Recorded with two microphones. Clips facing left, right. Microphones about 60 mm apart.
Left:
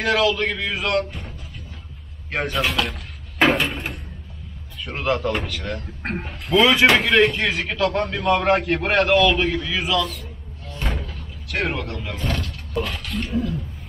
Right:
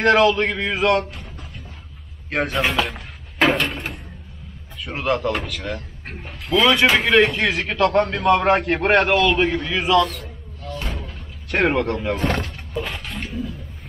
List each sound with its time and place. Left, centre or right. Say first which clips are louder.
0.0 s a man's voice: right 4 dB; centre
2.3 s speech: right 2 dB; centre
3.3 s door: even; centre
4.8 s a man's voice: right 1 dB; centre
10.8 s slam: left 5 dB; centre
11.5 s speech: right 6 dB; right
12.2 s speech: right 4 dB; right
12.4 s a sound: left 1 dB; centre